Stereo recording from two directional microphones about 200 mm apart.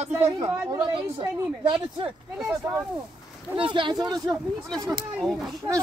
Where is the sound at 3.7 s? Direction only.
20° right (ahead or behind).